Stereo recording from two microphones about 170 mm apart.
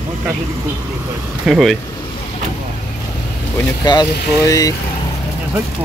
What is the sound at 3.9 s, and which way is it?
Speech, 20° left (ahead or behind).